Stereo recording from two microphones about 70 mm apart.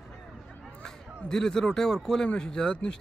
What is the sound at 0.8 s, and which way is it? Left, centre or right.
A man's voice, centre.